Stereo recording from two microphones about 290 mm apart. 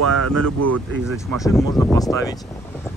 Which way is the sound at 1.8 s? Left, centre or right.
Centre.